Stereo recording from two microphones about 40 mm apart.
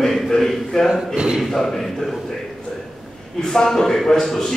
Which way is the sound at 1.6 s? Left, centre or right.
Centre.